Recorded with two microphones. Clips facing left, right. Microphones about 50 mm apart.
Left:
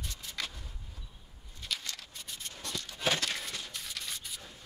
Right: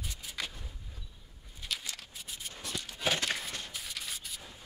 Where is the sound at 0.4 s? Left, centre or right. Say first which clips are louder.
Even; centre.